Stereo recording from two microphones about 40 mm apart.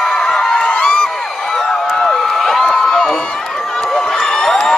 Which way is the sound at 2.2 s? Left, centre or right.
Centre.